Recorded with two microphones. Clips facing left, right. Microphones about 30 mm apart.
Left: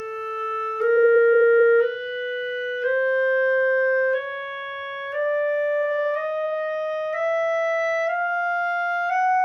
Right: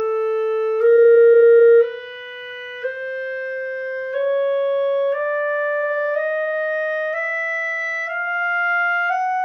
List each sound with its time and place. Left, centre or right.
0.8 s music: centre
3.0 s music: centre
8.2 s music: centre